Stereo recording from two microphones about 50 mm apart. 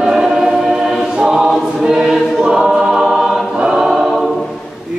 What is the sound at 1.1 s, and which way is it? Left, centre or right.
Choir, centre.